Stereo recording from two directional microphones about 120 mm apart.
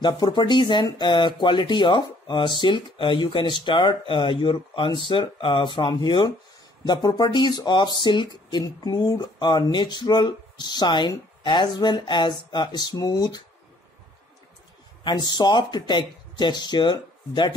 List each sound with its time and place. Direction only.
0.0 s speech: 35° left (ahead or behind)
15.0 s speech: 35° left (ahead or behind)